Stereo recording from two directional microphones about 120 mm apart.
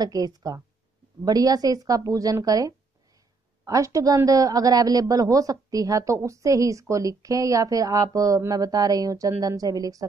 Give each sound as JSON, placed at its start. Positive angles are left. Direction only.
{"t": 0.0, "sound": "speech", "side_deg": -35}